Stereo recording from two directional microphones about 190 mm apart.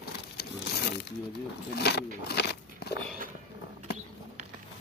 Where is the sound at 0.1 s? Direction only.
60° left (ahead or behind).